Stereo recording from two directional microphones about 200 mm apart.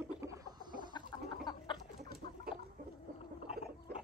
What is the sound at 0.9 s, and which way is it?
Chicken, 20° left (ahead or behind).